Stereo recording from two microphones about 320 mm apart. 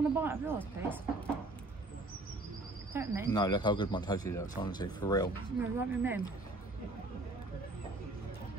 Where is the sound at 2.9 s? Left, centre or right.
Centre.